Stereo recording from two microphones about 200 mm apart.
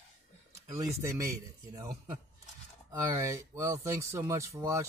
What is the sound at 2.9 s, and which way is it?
Speech, 15° right (ahead or behind).